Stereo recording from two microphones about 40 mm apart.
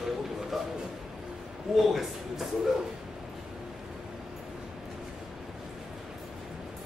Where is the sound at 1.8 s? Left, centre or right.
Centre.